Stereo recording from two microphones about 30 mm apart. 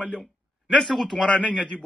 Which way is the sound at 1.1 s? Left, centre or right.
Left.